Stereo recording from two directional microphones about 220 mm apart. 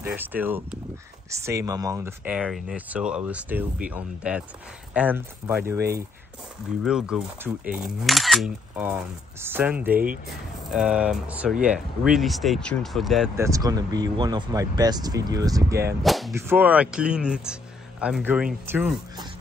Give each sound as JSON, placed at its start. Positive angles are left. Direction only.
{"t": 0.0, "sound": "speech", "side_deg": -10}
{"t": 13.4, "sound": "speech", "side_deg": -15}
{"t": 16.0, "sound": "whip", "side_deg": 0}
{"t": 16.3, "sound": "speech", "side_deg": -10}